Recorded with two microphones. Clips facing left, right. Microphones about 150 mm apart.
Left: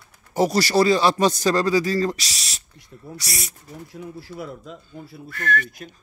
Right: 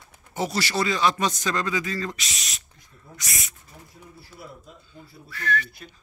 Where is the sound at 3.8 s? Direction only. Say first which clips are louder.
Left 14 dB; 90° left; by 5.9 s 50° left (ahead or behind).